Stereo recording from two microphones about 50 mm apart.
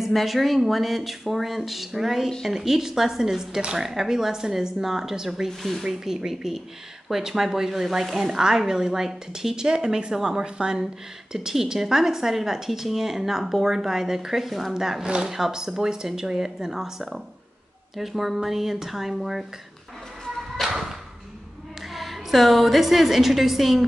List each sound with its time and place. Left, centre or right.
0.0 s speech: centre
5.5 s speech: centre
5.9 s speech: centre
20.6 s a sound: centre
21.9 s a woman's voice: centre